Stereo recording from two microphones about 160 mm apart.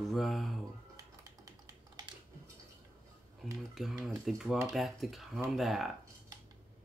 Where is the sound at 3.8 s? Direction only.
Centre (ahead or behind).